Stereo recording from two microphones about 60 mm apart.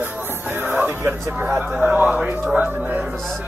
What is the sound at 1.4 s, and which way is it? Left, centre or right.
Speech, right.